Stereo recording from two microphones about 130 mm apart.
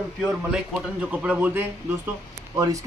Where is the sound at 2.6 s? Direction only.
25° right (ahead or behind).